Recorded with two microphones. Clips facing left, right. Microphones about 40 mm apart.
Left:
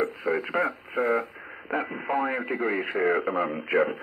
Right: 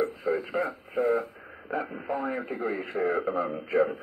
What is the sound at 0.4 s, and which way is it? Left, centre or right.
Speech, left.